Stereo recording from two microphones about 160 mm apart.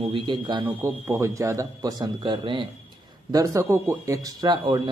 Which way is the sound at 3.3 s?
20° right (ahead or behind).